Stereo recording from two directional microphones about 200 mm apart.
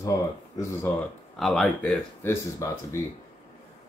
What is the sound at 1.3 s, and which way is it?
Speech, centre (ahead or behind).